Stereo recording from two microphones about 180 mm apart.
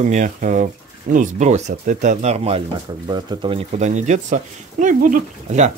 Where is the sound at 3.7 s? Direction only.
40° right (ahead or behind).